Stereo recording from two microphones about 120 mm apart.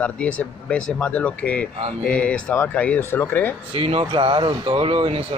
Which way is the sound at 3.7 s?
50° right (ahead or behind).